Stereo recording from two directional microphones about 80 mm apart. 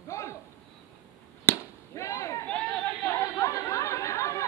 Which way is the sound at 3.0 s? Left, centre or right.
Left.